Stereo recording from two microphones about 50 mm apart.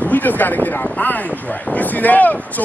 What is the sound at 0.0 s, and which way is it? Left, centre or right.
Speech, left.